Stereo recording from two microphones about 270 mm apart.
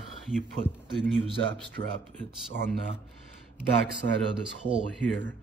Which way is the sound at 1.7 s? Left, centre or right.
Right.